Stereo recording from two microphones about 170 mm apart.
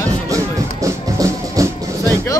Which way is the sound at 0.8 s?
20° right (ahead or behind).